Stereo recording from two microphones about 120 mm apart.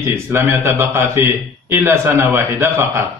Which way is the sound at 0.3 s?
25° right (ahead or behind).